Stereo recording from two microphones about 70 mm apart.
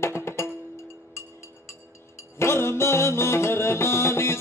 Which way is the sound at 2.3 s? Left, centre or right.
Left.